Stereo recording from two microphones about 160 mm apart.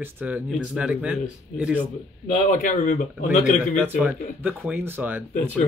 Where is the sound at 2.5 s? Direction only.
50° left (ahead or behind).